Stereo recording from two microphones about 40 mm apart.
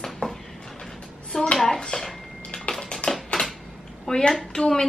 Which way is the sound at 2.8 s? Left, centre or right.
Centre.